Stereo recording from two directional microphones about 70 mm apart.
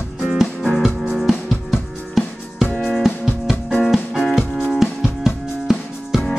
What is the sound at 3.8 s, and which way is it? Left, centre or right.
Music, centre.